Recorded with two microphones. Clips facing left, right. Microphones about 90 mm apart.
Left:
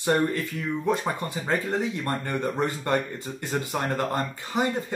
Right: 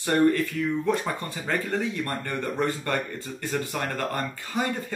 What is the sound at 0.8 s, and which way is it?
Speech, 20° left (ahead or behind).